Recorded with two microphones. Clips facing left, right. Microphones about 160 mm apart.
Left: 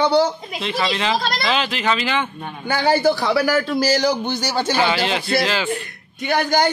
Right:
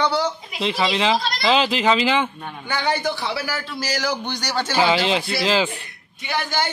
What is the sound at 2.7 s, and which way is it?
Speech, 35° left (ahead or behind).